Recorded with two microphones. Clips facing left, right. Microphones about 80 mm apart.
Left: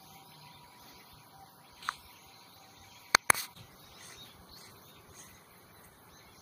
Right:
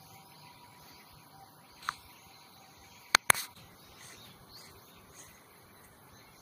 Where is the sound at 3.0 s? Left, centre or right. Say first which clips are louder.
Even; centre.